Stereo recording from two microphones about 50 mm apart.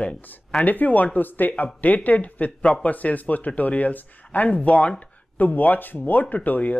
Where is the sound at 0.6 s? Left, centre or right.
Left.